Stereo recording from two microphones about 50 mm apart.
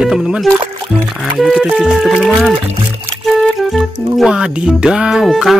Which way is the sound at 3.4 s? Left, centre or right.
Centre.